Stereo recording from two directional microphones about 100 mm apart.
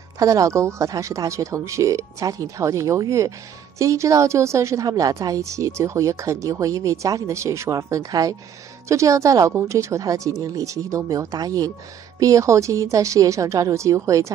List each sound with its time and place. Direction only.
0.2 s speech: 35° right (ahead or behind)
9.5 s a woman's voice: 20° right (ahead or behind)
9.8 s speech: 30° right (ahead or behind)